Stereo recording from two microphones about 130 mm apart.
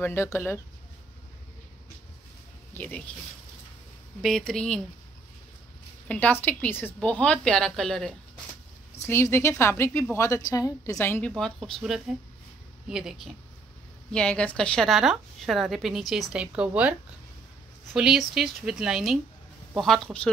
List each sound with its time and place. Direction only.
0.0 s a woman's voice: 20° left (ahead or behind)
2.7 s speech: 15° left (ahead or behind)
4.2 s a woman's voice: 5° left (ahead or behind)
6.0 s a woman's voice: 10° left (ahead or behind)
9.0 s a woman's voice: 20° left (ahead or behind)
11.3 s a woman's voice: 5° left (ahead or behind)
14.1 s a woman's voice: 10° left (ahead or behind); by 16.9 s 10° right (ahead or behind)
17.9 s a woman's voice: 5° right (ahead or behind)